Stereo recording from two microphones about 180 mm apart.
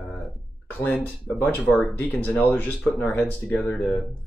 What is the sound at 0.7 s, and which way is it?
Speech, 10° left (ahead or behind).